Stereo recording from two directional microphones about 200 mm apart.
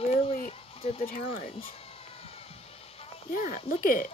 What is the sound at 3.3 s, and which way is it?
Speech, 45° left (ahead or behind).